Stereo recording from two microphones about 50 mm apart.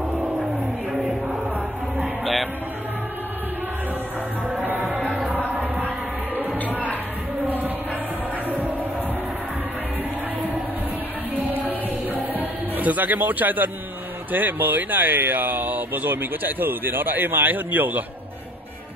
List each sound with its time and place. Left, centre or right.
0.9 s chant: centre
4.6 s music: right
6.6 s music: left
7.4 s music: right
12.1 s music: right
14.3 s speech: right